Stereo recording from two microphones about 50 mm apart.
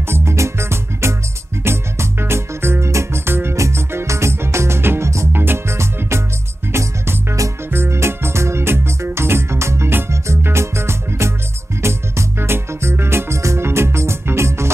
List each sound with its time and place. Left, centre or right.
0.1 s music: right
2.9 s music: right
3.5 s music: right
5.8 s music: right